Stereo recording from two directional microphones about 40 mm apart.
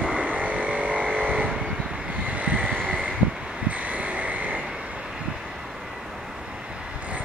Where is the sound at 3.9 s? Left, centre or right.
Right.